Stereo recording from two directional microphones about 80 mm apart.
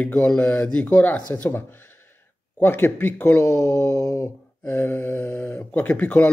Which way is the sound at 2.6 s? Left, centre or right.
Left.